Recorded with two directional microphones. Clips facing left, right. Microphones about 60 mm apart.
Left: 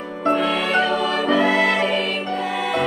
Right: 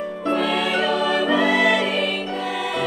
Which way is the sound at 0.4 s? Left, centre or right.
Left.